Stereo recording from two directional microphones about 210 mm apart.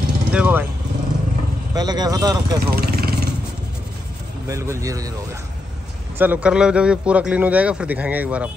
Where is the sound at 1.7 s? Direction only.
20° right (ahead or behind).